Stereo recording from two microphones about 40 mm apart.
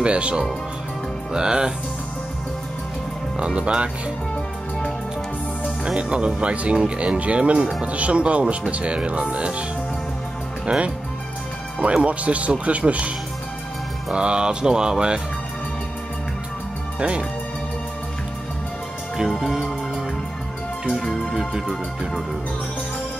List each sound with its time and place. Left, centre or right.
0.0 s speech: right
3.3 s speech: right
5.9 s speech: right
10.7 s speech: right
14.1 s speech: right
19.4 s speech: centre
20.9 s music: centre
21.5 s speech: centre